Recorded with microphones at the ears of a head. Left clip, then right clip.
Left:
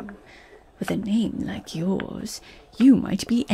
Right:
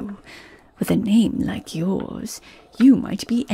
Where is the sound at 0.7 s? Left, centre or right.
Right.